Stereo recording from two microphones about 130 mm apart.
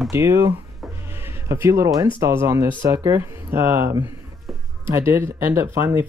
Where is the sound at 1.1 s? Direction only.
20° right (ahead or behind).